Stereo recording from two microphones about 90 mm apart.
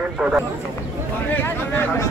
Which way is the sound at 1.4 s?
20° left (ahead or behind).